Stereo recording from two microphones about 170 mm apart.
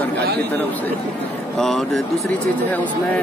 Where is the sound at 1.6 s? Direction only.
Centre (ahead or behind).